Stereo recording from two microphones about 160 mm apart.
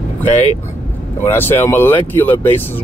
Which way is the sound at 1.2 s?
15° left (ahead or behind).